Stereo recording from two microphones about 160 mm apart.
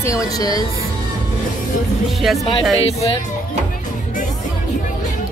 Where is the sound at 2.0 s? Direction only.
Centre (ahead or behind).